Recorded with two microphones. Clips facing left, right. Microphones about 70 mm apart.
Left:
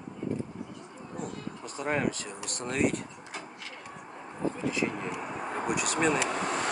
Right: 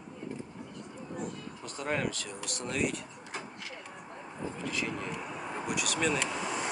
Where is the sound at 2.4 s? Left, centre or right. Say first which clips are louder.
Left 4 dB; left.